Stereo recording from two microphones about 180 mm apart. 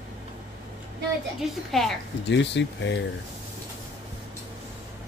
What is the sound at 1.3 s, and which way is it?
Speech, centre (ahead or behind).